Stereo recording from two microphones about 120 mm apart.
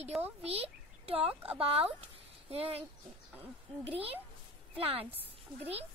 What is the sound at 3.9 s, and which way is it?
Speech, 55° right (ahead or behind).